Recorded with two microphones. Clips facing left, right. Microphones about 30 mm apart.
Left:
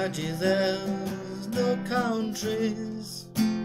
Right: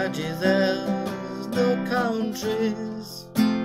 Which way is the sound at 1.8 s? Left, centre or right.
Centre.